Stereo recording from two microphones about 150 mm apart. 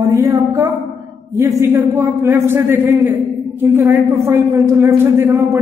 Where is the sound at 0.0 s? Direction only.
20° right (ahead or behind).